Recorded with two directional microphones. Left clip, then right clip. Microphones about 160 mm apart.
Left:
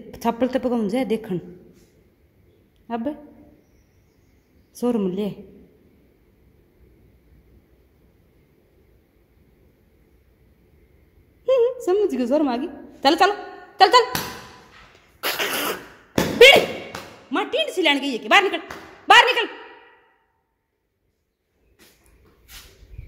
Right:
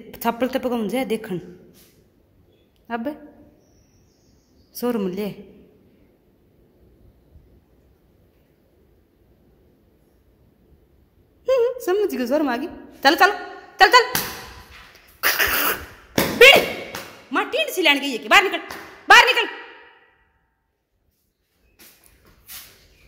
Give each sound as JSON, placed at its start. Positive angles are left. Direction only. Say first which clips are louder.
{"t": 0.1, "sound": "a woman's voice", "louder": "even", "side_deg": 20}
{"t": 2.9, "sound": "a woman's voice", "louder": "even", "side_deg": 20}
{"t": 4.7, "sound": "a woman's voice", "louder": "left 1 dB", "side_deg": 20}
{"t": 11.4, "sound": "a sound", "louder": "left 1 dB", "side_deg": 20}
{"t": 15.1, "sound": "cough", "louder": "right 4 dB", "side_deg": 20}
{"t": 16.3, "sound": "thump", "louder": "even", "side_deg": 25}
{"t": 17.3, "sound": "a sound", "louder": "right 1 dB", "side_deg": 20}
{"t": 19.0, "sound": "a woman's voice", "louder": "right 1 dB", "side_deg": 20}